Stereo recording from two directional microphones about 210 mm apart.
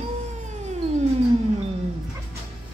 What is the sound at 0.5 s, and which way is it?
Cat, 35° right (ahead or behind).